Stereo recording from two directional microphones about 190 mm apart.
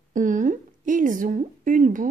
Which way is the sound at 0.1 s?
40° right (ahead or behind).